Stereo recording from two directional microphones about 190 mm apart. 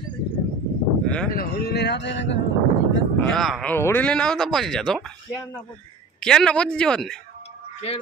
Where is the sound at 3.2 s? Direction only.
Centre (ahead or behind).